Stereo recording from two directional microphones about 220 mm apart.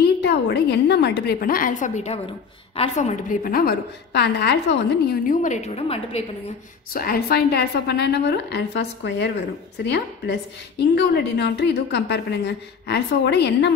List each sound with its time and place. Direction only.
0.2 s a woman's voice: 50° left (ahead or behind); by 6.2 s 25° left (ahead or behind)
6.9 s a woman's voice: 40° left (ahead or behind)